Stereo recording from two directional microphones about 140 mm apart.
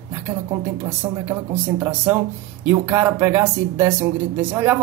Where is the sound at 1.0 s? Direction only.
15° right (ahead or behind).